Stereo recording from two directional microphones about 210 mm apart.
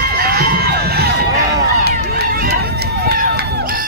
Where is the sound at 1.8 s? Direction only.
50° right (ahead or behind).